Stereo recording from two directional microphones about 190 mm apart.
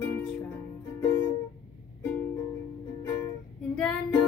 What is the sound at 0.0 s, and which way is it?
Music, 10° left (ahead or behind).